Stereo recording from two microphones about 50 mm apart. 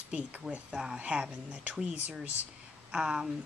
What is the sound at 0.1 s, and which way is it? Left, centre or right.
A woman's voice, right.